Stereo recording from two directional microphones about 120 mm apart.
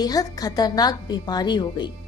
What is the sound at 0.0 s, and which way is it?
A woman's voice, 30° left (ahead or behind).